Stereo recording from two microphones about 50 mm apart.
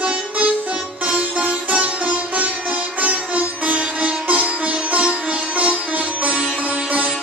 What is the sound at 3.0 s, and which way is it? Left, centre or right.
Sitar, right.